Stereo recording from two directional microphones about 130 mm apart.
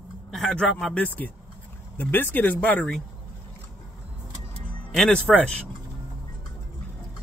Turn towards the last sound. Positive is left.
turn(degrees=10)  # may be behind; listen again after turning